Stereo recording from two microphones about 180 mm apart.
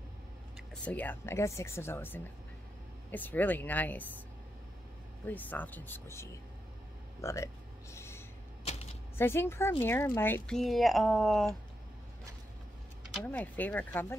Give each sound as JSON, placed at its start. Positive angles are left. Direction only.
{"t": 0.6, "sound": "a woman's voice", "side_deg": 10}
{"t": 5.2, "sound": "a woman's voice", "side_deg": 10}
{"t": 7.9, "sound": "a sound", "side_deg": 15}
{"t": 9.2, "sound": "a woman's voice", "side_deg": 15}
{"t": 13.2, "sound": "a woman's voice", "side_deg": 10}